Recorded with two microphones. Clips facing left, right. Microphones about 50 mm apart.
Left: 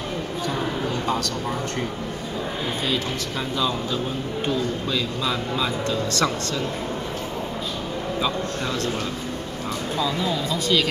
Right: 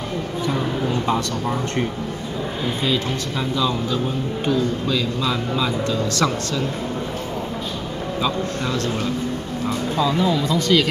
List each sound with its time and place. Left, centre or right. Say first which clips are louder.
0.5 s a sound: right 4 dB; right
4.5 s speech: right 5 dB; centre
10.0 s speech: right 6 dB; centre